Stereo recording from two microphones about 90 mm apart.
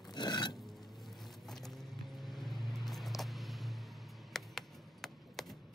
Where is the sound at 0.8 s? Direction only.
Centre (ahead or behind).